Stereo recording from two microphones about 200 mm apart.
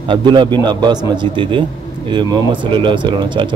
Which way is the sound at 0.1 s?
25° right (ahead or behind).